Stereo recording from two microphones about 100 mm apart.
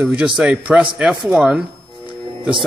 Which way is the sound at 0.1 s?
10° right (ahead or behind).